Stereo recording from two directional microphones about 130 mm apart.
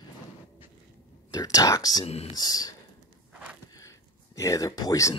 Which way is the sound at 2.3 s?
30° left (ahead or behind).